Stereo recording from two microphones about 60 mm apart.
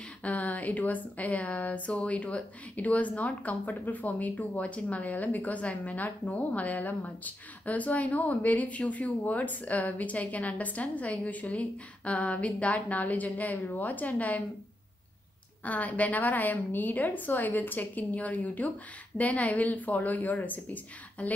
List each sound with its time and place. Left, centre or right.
0.2 s speech: left
15.6 s speech: left